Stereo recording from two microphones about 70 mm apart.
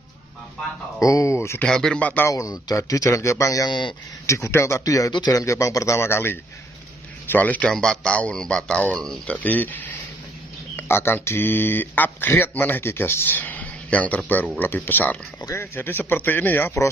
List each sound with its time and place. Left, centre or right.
0.9 s speech: left
1.7 s speech: centre
2.0 s speech: left
2.3 s speech: left
5.1 s speech: left
5.4 s speech: left
7.2 s speech: left
7.7 s speech: centre
9.4 s speech: left
10.8 s speech: left